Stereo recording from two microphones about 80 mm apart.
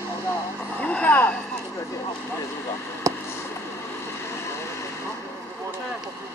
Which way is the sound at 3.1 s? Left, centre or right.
Right.